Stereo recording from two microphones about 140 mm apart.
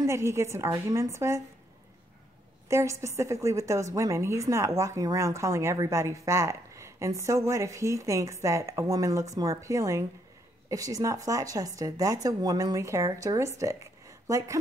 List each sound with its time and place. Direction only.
0.0 s a woman's voice: 20° right (ahead or behind)
2.7 s a woman's voice: 20° right (ahead or behind)